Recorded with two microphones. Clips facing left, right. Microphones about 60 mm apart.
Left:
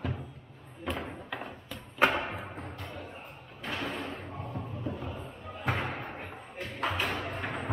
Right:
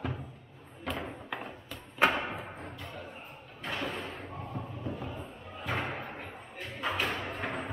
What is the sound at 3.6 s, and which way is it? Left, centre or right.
Door, centre.